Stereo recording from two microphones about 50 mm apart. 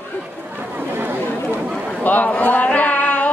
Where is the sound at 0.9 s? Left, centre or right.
Right.